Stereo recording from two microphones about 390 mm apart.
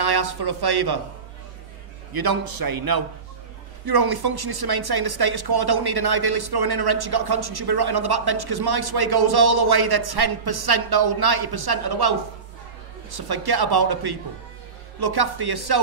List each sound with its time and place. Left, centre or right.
0.0 s speech: right
2.1 s a man's voice: right